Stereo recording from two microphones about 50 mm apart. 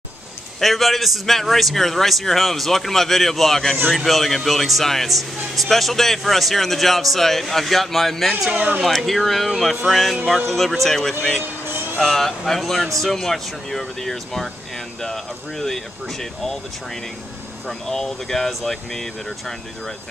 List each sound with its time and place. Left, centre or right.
0.6 s speech: centre
8.3 s speech: centre
8.5 s speech: right
8.8 s speech: centre
17.6 s speech: centre